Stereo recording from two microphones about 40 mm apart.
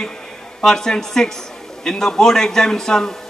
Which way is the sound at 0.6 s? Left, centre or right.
Centre.